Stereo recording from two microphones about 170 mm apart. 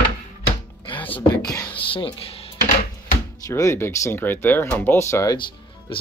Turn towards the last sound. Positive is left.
turn(degrees=15)  # may be behind; listen again after turning